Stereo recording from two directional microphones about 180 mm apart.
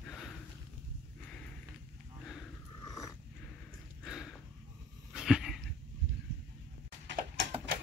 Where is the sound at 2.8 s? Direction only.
20° left (ahead or behind).